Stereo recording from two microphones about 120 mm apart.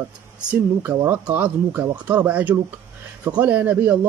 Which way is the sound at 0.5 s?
15° right (ahead or behind).